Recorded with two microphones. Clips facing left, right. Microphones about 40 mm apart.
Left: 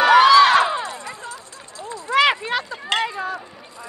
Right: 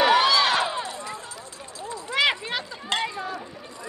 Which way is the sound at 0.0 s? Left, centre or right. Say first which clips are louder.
Left 8 dB; left.